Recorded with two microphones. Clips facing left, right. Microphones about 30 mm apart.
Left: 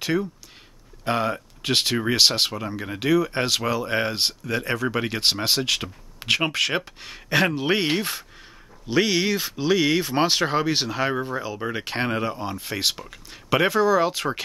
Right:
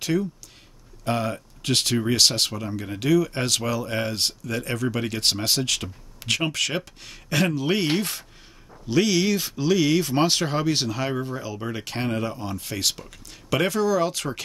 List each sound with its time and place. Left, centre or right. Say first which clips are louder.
0.0 s speech: even; left
7.9 s speech: even; centre